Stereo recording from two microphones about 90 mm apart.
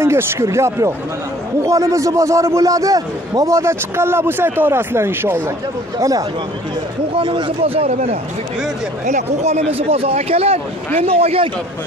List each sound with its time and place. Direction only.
0.0 s a man's voice: 30° right (ahead or behind)
5.9 s a man's voice: 40° right (ahead or behind)
7.2 s speech: 75° right (ahead or behind)
9.8 s speech: 90° right